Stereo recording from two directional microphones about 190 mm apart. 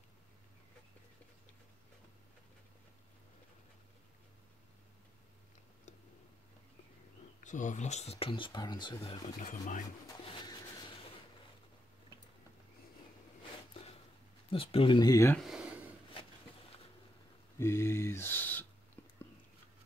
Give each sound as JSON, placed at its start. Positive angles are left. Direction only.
{"t": 7.4, "sound": "speech", "side_deg": 40}
{"t": 9.4, "sound": "speech", "side_deg": 45}
{"t": 10.2, "sound": "a sound", "side_deg": 25}
{"t": 14.5, "sound": "speech", "side_deg": 30}
{"t": 15.3, "sound": "speech", "side_deg": 0}
{"t": 17.6, "sound": "speech", "side_deg": 15}